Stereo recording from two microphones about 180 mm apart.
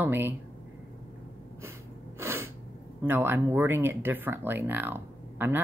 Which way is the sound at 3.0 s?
10° right (ahead or behind).